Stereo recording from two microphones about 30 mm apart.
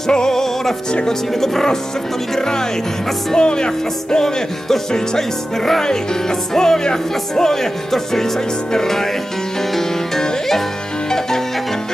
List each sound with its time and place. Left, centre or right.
0.0 s speech: left
0.3 s music: centre
2.3 s speech: left
4.9 s music: centre